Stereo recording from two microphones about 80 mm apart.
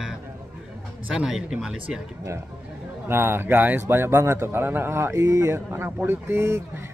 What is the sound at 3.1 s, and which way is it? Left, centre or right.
A man's voice, right.